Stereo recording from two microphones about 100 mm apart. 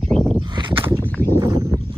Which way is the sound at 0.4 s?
55° right (ahead or behind).